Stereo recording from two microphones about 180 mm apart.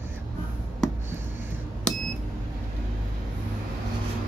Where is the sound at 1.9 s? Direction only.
5° left (ahead or behind).